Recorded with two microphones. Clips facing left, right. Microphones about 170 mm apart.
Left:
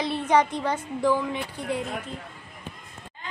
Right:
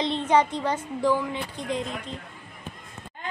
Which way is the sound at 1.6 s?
10° left (ahead or behind).